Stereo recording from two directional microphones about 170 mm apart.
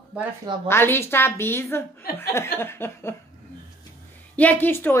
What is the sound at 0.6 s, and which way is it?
A woman's voice, 15° left (ahead or behind).